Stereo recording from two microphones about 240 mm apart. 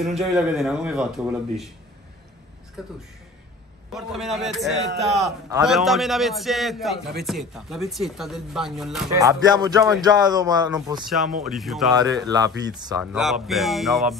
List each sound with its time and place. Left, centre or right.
0.0 s speech: centre
3.9 s speech: centre
9.1 s speech: centre
11.1 s speech: centre
11.9 s speech: centre
13.0 s speech: centre